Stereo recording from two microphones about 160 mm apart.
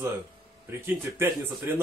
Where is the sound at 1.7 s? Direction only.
15° right (ahead or behind).